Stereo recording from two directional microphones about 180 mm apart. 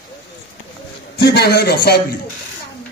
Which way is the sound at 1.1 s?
70° left (ahead or behind).